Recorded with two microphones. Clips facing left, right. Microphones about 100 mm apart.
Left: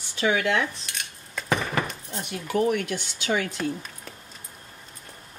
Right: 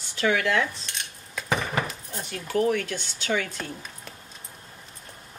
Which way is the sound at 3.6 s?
Centre (ahead or behind).